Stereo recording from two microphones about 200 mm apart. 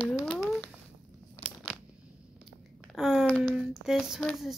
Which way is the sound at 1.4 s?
15° right (ahead or behind).